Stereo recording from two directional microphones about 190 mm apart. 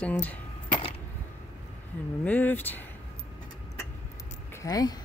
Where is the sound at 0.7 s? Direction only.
25° left (ahead or behind).